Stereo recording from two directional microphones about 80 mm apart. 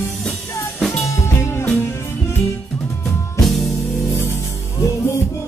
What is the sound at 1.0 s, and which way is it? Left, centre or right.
Music, left.